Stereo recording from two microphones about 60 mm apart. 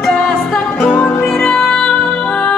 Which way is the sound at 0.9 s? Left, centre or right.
Left.